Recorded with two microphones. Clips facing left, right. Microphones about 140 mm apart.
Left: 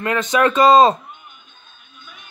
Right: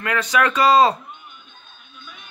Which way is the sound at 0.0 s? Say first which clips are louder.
Left 3 dB; 25° left (ahead or behind).